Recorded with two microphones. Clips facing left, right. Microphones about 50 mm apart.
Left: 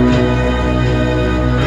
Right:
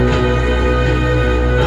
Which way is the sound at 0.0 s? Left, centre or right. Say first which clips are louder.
Left 2 dB; right.